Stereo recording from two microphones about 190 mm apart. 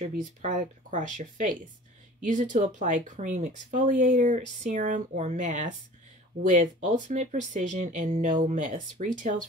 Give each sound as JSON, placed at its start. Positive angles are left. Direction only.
{"t": 0.0, "sound": "speech", "side_deg": -40}